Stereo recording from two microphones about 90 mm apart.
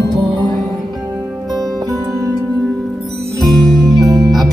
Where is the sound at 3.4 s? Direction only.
Centre (ahead or behind).